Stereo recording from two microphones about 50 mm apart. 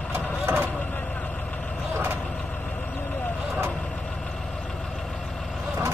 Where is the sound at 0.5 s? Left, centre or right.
Right.